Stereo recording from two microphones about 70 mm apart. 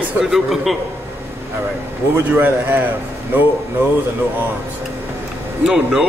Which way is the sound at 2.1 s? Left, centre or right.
Right.